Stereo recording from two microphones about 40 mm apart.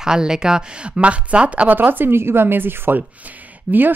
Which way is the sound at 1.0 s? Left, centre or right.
Right.